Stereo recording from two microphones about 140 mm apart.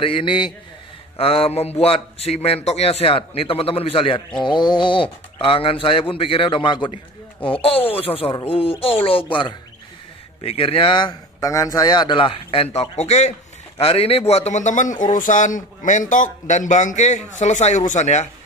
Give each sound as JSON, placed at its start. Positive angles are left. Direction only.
{"t": 0.0, "sound": "a man's voice", "side_deg": 40}
{"t": 10.4, "sound": "a man's voice", "side_deg": 45}